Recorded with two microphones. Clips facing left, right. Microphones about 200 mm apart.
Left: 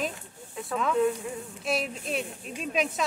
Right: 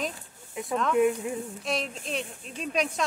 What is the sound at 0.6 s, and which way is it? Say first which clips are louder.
Speech: right 2 dB; 15° right (ahead or behind).